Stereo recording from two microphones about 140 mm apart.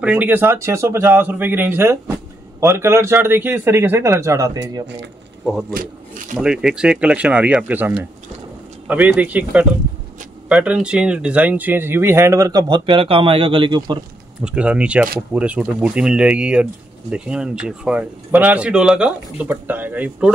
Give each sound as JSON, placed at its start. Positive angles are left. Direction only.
{"t": 0.0, "sound": "speech", "side_deg": -10}
{"t": 5.4, "sound": "speech", "side_deg": -5}
{"t": 14.4, "sound": "speech", "side_deg": -5}